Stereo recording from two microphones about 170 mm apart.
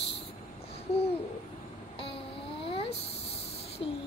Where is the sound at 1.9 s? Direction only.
35° left (ahead or behind).